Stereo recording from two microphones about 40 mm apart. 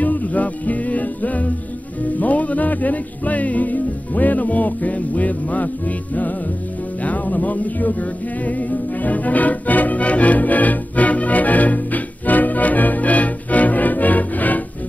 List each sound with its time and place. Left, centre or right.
0.0 s music: left